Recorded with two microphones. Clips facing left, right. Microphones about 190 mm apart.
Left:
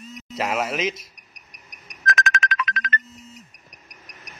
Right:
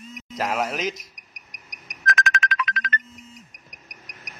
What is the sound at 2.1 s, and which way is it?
Music, 45° left (ahead or behind).